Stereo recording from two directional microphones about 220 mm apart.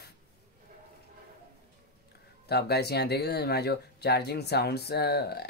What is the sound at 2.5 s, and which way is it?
Speech, 45° left (ahead or behind).